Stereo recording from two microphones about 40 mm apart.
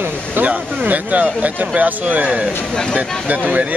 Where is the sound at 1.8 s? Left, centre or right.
Right.